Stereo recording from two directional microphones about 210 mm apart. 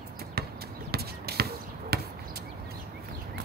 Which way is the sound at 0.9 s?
50° right (ahead or behind).